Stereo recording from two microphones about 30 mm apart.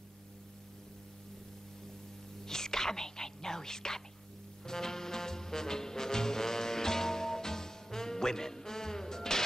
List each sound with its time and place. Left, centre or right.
2.4 s whispering: centre
4.6 s music: centre